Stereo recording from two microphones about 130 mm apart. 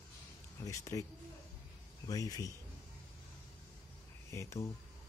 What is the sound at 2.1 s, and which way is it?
Speech, 25° left (ahead or behind).